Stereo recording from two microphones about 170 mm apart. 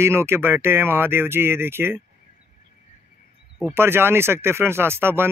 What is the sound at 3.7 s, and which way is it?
A man's voice, 15° right (ahead or behind).